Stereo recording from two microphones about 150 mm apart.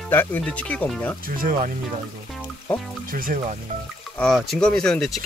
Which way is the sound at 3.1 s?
65° right (ahead or behind).